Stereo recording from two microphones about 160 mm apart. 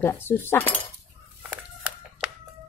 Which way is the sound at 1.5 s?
5° right (ahead or behind).